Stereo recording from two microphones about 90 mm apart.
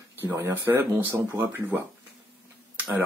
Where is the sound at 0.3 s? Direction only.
30° right (ahead or behind).